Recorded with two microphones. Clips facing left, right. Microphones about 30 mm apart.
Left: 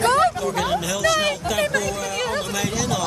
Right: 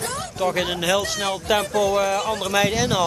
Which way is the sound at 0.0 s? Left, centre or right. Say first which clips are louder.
Left 12 dB; left.